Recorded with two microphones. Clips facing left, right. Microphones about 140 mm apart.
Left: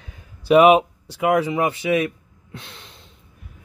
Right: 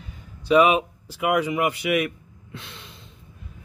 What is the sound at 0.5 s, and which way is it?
Speech, 30° left (ahead or behind).